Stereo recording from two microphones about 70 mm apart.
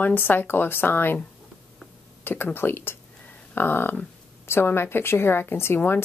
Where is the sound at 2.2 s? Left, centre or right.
Left.